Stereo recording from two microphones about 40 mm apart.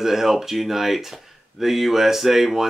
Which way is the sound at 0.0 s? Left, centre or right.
Centre.